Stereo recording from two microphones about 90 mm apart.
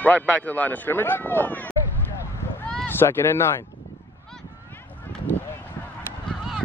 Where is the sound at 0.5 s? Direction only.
20° left (ahead or behind).